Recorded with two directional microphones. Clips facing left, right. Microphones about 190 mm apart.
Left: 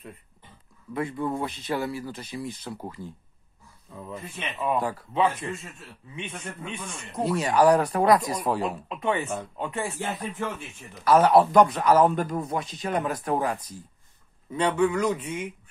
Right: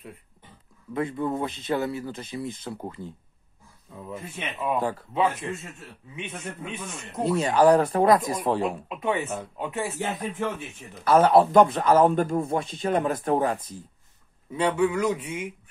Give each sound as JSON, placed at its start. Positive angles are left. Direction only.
{"t": 0.9, "sound": "speech", "side_deg": -25}
{"t": 4.1, "sound": "a man's voice", "side_deg": -10}
{"t": 7.2, "sound": "speech", "side_deg": -25}
{"t": 8.6, "sound": "speech", "side_deg": -5}
{"t": 9.9, "sound": "speech", "side_deg": -20}
{"t": 14.5, "sound": "a man's voice", "side_deg": -5}